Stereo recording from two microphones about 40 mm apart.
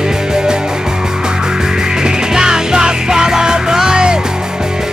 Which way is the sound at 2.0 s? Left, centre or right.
Centre.